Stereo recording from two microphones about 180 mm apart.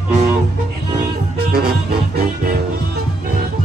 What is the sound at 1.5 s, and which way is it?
Music, 60° right (ahead or behind).